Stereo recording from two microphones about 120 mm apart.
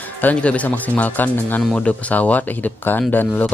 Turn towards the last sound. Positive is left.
turn(degrees=15)  # may be behind; listen again after turning